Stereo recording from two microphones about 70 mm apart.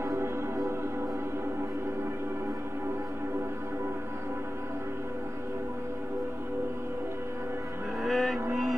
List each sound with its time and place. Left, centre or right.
0.1 s music: right
8.0 s music: centre